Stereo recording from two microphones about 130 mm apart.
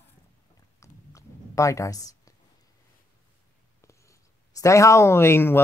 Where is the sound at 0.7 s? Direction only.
25° left (ahead or behind).